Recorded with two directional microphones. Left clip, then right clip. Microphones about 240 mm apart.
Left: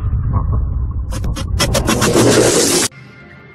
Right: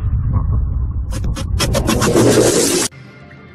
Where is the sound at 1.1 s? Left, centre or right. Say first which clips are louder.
Left 1 dB; centre.